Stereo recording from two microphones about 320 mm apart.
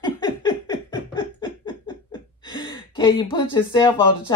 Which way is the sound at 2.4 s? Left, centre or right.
Centre.